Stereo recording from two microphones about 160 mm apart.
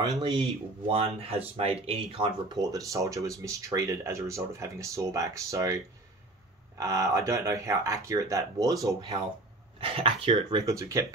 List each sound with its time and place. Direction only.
0.2 s speech: 30° right (ahead or behind)
6.8 s speech: 20° right (ahead or behind)
9.8 s speech: 35° right (ahead or behind)
10.6 s speech: 20° right (ahead or behind)